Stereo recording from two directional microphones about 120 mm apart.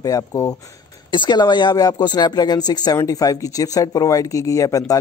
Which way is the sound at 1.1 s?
40° left (ahead or behind).